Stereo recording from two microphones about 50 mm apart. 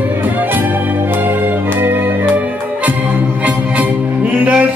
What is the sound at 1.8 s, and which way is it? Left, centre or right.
Music, right.